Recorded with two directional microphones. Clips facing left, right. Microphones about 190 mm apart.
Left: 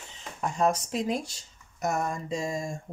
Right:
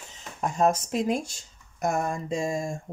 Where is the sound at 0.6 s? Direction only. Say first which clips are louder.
Right 3 dB; 45° right (ahead or behind).